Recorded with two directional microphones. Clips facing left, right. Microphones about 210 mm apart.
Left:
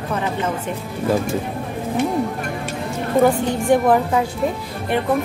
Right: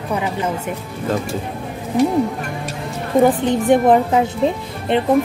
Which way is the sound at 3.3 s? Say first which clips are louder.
Right 2 dB; 20° right (ahead or behind).